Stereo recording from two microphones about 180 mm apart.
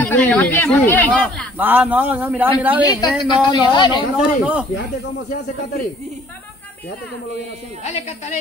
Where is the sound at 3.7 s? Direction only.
25° left (ahead or behind).